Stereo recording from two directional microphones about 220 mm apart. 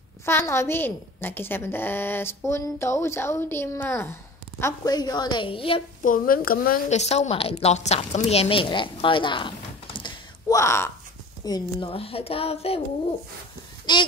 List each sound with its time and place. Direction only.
0.2 s a woman's voice: 10° left (ahead or behind)
6.0 s a woman's voice: 40° left (ahead or behind); by 9.5 s 20° left (ahead or behind)
9.9 s a sound: 20° left (ahead or behind)
11.4 s a woman's voice: 20° left (ahead or behind)
13.9 s a woman's voice: 20° left (ahead or behind)